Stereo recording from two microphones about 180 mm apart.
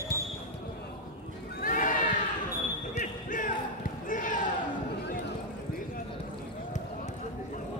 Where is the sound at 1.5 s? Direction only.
50° left (ahead or behind).